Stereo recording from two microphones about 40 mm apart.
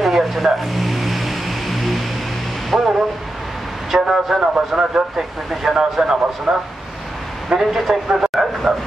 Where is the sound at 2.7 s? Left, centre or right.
Right.